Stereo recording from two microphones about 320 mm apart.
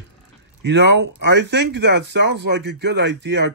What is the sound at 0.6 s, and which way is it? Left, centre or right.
Speech, right.